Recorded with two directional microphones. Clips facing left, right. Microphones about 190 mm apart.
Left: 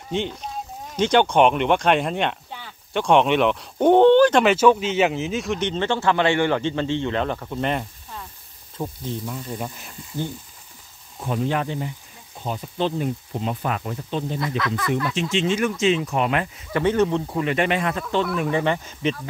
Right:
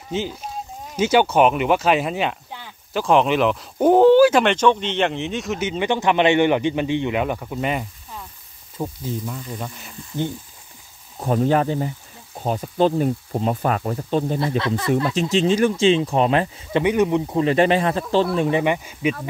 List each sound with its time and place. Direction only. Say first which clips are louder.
0.1 s speech: even; 5° right (ahead or behind)
11.1 s speech: right 6 dB; 40° right (ahead or behind)
14.4 s speech: right 3 dB; 30° right (ahead or behind)
15.1 s speech: right 4 dB; 40° right (ahead or behind)
16.8 s speech: right 1 dB; 15° right (ahead or behind)
17.4 s speech: right 6 dB; 35° right (ahead or behind)
18.6 s speech: right 2 dB; 10° right (ahead or behind)